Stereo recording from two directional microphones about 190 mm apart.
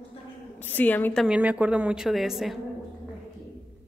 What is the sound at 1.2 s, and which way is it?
A woman's voice, 5° right (ahead or behind).